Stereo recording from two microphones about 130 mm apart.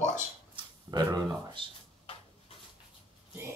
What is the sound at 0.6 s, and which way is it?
Speech, 30° right (ahead or behind).